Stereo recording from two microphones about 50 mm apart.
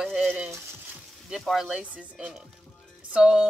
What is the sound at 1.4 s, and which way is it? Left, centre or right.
Speech, centre.